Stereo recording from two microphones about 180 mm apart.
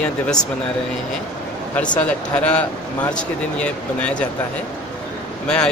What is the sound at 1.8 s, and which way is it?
A man's voice, 5° left (ahead or behind).